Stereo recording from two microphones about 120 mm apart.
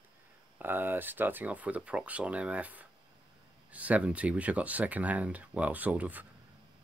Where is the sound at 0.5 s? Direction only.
15° right (ahead or behind).